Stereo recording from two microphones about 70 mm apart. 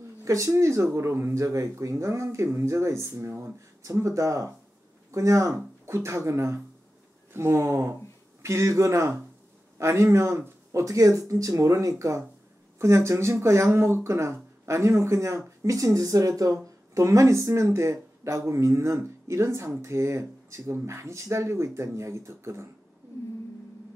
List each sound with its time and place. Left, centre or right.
0.2 s a man's voice: right